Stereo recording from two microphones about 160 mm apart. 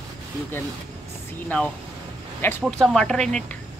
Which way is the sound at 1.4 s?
10° left (ahead or behind).